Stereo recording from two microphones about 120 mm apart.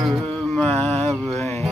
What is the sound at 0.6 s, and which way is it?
Mantra, 15° left (ahead or behind).